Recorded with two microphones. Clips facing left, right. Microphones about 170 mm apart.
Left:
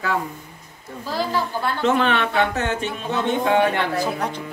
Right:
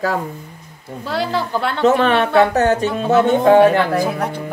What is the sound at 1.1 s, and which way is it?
Speech, 75° right (ahead or behind).